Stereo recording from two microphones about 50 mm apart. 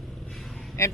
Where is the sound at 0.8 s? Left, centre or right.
Left.